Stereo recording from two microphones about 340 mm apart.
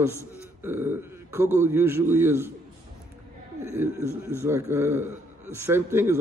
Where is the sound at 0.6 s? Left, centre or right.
Centre.